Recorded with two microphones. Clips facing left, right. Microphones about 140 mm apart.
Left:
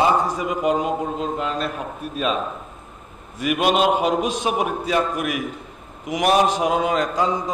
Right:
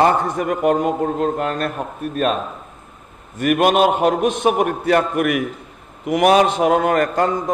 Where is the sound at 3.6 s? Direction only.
50° right (ahead or behind).